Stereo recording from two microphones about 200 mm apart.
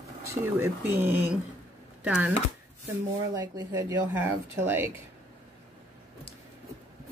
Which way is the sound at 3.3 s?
15° right (ahead or behind).